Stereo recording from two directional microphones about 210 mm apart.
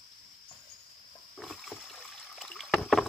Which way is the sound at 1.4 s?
Centre (ahead or behind).